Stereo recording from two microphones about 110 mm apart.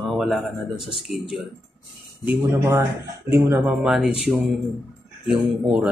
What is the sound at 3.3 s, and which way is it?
Speech, 20° right (ahead or behind).